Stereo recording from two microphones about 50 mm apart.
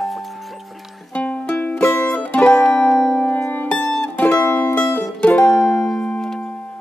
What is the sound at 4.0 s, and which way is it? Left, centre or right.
Music, left.